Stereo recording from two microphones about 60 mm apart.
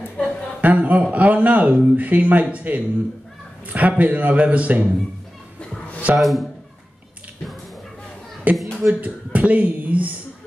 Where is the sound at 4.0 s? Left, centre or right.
Right.